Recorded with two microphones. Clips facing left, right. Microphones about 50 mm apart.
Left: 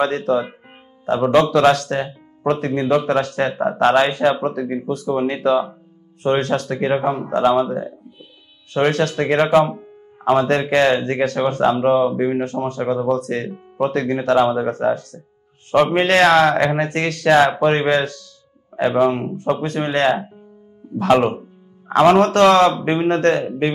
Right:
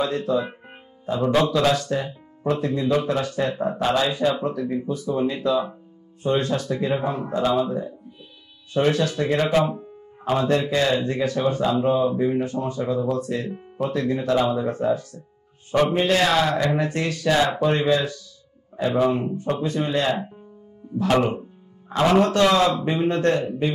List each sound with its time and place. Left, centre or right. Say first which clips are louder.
0.0 s speech: left 4 dB; left
8.6 s speech: left 3 dB; left
15.7 s speech: left 5 dB; left
18.8 s speech: left 4 dB; left
21.0 s speech: left 5 dB; left
21.8 s music: left 8 dB; left
22.2 s speech: left 6 dB; left